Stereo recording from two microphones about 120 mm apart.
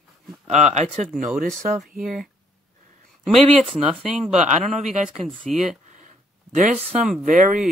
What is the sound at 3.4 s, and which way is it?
Speech, 45° right (ahead or behind).